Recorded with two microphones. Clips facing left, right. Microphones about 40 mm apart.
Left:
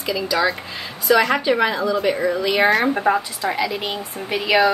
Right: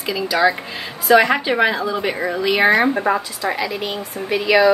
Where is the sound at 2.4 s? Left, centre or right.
Centre.